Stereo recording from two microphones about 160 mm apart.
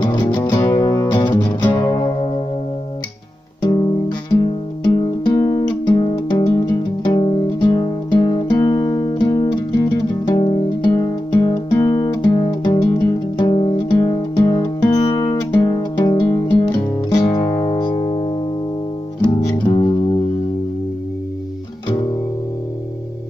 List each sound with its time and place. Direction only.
0.0 s music: 25° left (ahead or behind)
1.7 s music: 15° left (ahead or behind)
3.6 s music: 25° left (ahead or behind)
19.2 s guitar: 25° left (ahead or behind)